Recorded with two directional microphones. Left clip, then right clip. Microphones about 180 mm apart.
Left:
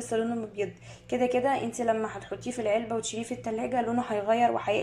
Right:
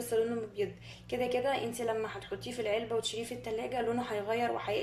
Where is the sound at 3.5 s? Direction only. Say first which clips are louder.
Left 5 dB; 5° left (ahead or behind).